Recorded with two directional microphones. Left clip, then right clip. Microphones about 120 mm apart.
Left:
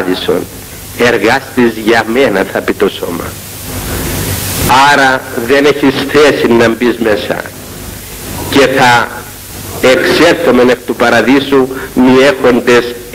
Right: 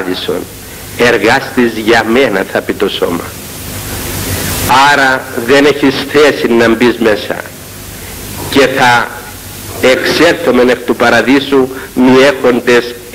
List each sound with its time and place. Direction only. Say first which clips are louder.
0.0 s a man's voice: left 3 dB; 40° right (ahead or behind)
4.6 s a man's voice: left 1 dB; 40° right (ahead or behind)
8.5 s a man's voice: left 1 dB; 40° right (ahead or behind)